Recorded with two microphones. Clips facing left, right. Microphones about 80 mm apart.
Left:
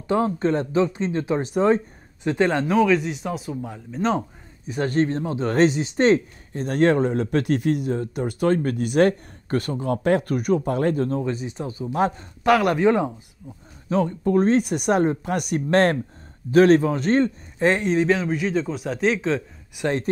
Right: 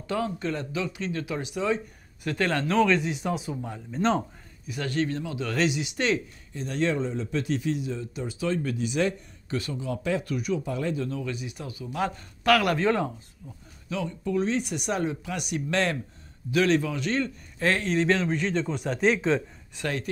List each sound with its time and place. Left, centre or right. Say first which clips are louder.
0.1 s speech: left 8 dB; left
2.2 s speech: left 6 dB; left; by 4.2 s centre
4.6 s a man's voice: left 6 dB; left; by 13.1 s centre
13.8 s a man's voice: left 9 dB; left
17.6 s a man's voice: left 5 dB; left; by 19.4 s centre
19.8 s a man's voice: left 7 dB; centre